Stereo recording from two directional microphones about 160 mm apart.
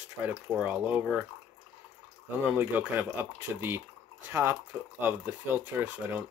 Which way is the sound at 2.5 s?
10° right (ahead or behind).